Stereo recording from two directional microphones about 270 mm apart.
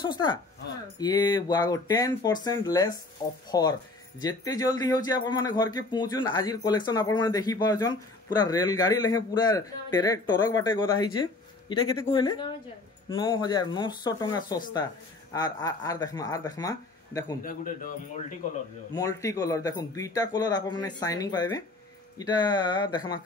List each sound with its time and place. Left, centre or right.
0.0 s a man's voice: centre
17.4 s speech: left
18.9 s a man's voice: centre